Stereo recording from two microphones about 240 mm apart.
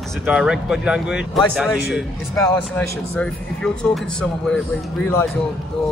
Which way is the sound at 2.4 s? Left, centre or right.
Centre.